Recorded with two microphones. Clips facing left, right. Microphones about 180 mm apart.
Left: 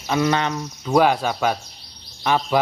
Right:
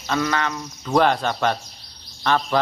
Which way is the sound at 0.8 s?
10° left (ahead or behind).